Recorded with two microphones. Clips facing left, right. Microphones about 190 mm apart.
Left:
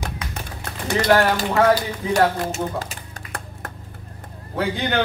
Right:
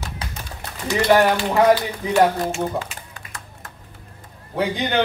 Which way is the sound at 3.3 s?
60° left (ahead or behind).